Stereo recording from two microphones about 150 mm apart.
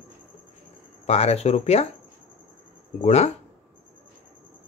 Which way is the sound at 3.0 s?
45° left (ahead or behind).